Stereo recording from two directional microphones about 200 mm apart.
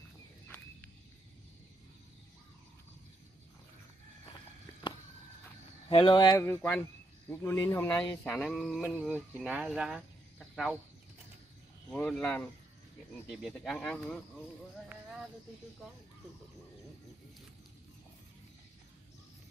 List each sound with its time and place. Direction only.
5.9 s speech: 25° left (ahead or behind)
6.4 s speech: 10° left (ahead or behind)
11.9 s speech: 5° left (ahead or behind)